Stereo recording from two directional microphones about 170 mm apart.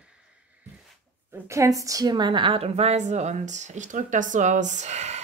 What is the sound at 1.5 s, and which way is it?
Speech, 20° right (ahead or behind).